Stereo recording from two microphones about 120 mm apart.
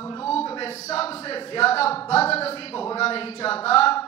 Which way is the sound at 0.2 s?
55° left (ahead or behind).